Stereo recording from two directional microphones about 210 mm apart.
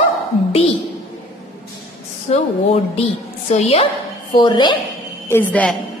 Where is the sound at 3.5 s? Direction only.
30° left (ahead or behind).